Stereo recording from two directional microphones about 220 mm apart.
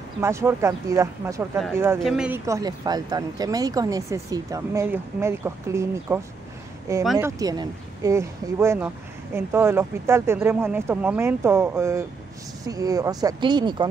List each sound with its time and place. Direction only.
0.2 s speech: 10° right (ahead or behind)
2.0 s speech: centre (ahead or behind); by 13.8 s 20° right (ahead or behind)